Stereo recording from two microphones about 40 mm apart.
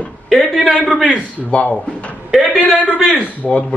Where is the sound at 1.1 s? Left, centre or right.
Left.